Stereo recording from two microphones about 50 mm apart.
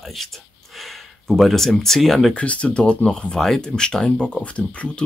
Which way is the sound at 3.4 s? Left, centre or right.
Centre.